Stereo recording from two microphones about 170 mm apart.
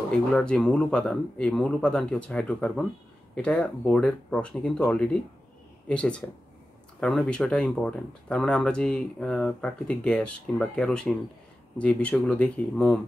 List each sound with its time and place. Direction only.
0.1 s speech: 5° left (ahead or behind)